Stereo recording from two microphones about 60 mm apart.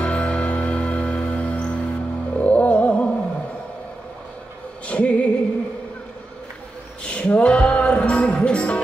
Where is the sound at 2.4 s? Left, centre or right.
Left.